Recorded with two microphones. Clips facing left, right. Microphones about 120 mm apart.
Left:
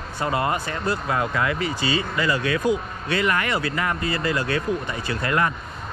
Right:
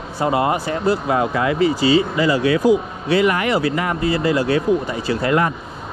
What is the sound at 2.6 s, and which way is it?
Speech, 90° right.